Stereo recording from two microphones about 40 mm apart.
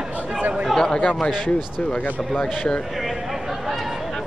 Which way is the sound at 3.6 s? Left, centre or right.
Centre.